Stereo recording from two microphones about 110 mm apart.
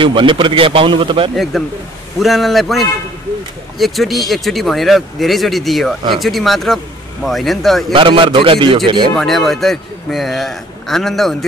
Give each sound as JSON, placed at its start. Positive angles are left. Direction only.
{"t": 0.0, "sound": "a man's voice", "side_deg": -50}
{"t": 1.3, "sound": "speech", "side_deg": 0}
{"t": 7.9, "sound": "a man's voice", "side_deg": -50}
{"t": 9.1, "sound": "speech", "side_deg": 5}